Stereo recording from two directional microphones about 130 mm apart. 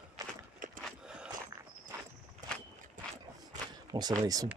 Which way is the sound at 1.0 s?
5° right (ahead or behind).